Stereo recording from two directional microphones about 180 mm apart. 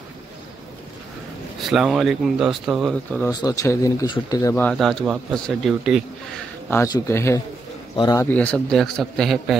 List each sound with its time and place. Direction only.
1.6 s speech: centre (ahead or behind)
3.3 s speech: 20° left (ahead or behind)
4.6 s speech: 5° left (ahead or behind)
6.7 s speech: 15° left (ahead or behind)
8.3 s speech: 10° left (ahead or behind)